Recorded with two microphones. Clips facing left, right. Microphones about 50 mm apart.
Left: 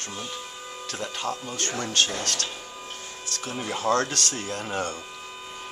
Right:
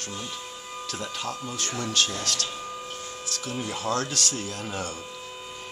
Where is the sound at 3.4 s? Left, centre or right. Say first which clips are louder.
Left 2 dB; left.